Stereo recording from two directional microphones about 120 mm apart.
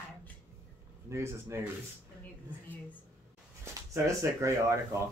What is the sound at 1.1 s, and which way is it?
Speech, 25° right (ahead or behind).